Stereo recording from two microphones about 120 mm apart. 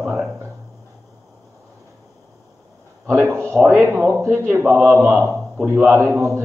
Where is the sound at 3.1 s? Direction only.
25° right (ahead or behind).